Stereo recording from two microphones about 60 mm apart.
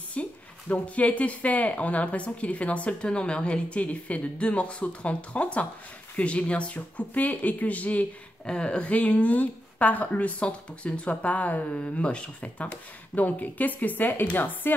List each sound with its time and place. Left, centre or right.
0.1 s speech: left